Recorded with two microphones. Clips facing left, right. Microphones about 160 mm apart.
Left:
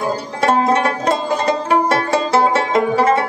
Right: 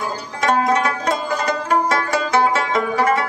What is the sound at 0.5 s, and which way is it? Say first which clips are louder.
Music: left 2 dB; 30° left (ahead or behind).